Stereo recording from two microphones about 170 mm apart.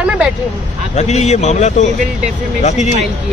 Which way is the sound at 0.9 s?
40° left (ahead or behind).